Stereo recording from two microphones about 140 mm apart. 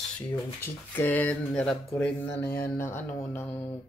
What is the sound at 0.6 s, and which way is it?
Speech, 15° left (ahead or behind).